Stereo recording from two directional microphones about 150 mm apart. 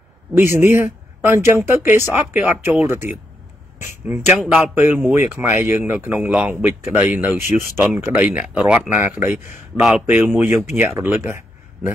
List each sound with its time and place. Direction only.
0.4 s a man's voice: 15° right (ahead or behind)
4.1 s a man's voice: 10° right (ahead or behind)